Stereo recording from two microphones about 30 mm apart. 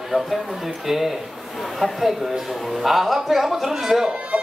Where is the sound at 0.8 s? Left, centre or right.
Centre.